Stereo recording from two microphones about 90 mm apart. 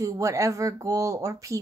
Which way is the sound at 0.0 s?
40° right (ahead or behind).